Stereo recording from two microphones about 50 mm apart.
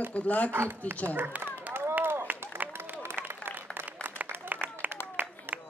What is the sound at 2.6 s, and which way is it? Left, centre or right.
Run, right.